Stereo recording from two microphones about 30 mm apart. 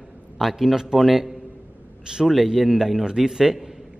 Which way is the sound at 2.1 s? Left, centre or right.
Right.